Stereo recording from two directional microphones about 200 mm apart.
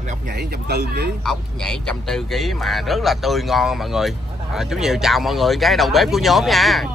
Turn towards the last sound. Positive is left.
turn(degrees=0)  # may be behind; listen again after turning